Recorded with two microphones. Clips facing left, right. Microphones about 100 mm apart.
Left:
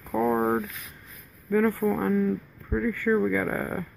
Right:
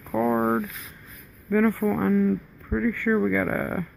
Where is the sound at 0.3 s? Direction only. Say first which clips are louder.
Right 1 dB; 15° right (ahead or behind).